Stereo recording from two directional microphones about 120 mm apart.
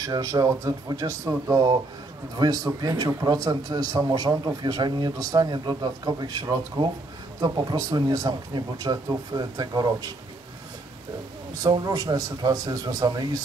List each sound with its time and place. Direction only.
0.0 s a man's voice: 30° right (ahead or behind)
11.6 s a man's voice: 35° right (ahead or behind)